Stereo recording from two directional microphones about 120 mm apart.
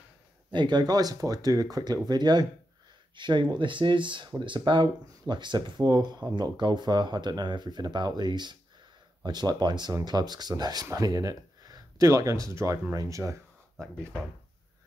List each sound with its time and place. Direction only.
0.5 s speech: 40° right (ahead or behind)